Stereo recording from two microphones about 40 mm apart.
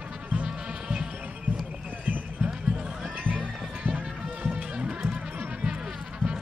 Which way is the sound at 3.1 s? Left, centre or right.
Right.